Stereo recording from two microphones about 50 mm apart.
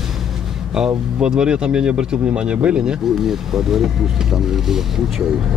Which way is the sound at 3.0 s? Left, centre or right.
Centre.